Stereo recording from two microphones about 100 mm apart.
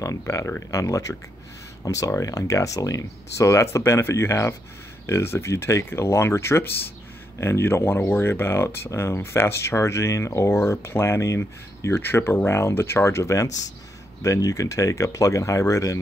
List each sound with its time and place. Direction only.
0.2 s speech: 30° left (ahead or behind)